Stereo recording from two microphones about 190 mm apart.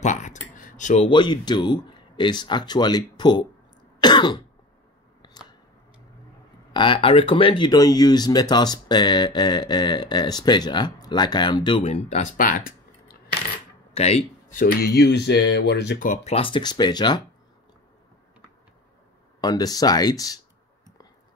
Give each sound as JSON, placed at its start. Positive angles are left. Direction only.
{"t": 0.0, "sound": "a sound", "side_deg": 40}
{"t": 1.0, "sound": "speech", "side_deg": 25}
{"t": 4.0, "sound": "cough", "side_deg": 25}
{"t": 6.7, "sound": "speech", "side_deg": 25}
{"t": 13.9, "sound": "speech", "side_deg": 35}
{"t": 16.3, "sound": "speech", "side_deg": 25}
{"t": 19.4, "sound": "speech", "side_deg": 20}